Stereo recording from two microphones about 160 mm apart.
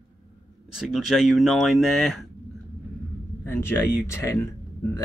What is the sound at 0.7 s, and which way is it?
A man's voice, 5° right (ahead or behind).